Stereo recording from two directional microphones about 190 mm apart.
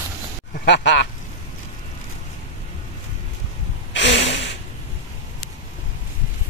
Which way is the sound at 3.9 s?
70° left (ahead or behind).